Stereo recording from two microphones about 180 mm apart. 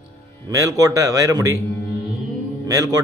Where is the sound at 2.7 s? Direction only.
20° right (ahead or behind).